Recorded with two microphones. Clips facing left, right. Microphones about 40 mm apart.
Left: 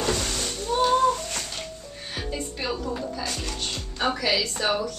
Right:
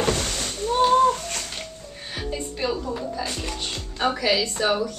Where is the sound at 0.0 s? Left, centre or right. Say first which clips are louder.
Right 2 dB; right.